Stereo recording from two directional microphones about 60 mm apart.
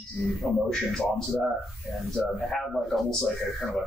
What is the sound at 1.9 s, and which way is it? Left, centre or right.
A man's voice, centre.